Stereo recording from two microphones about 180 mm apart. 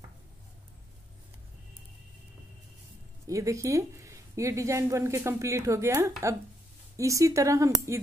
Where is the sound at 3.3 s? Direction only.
15° right (ahead or behind).